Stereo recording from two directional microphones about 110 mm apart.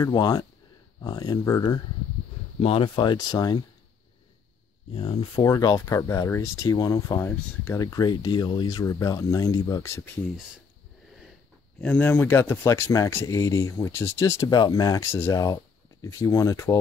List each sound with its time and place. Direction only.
0.0 s speech: 40° left (ahead or behind)
2.6 s speech: 60° left (ahead or behind); by 3.6 s 40° left (ahead or behind)
4.9 s speech: 55° left (ahead or behind)
5.4 s speech: 40° left (ahead or behind); by 7.8 s 20° left (ahead or behind)
7.8 s speech: 35° left (ahead or behind)
11.8 s speech: 15° left (ahead or behind)
14.5 s speech: 35° left (ahead or behind)